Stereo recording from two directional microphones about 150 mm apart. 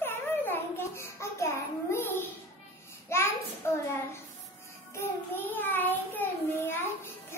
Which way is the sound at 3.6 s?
15° left (ahead or behind).